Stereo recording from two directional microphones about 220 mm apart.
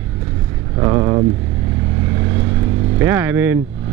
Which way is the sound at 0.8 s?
20° right (ahead or behind).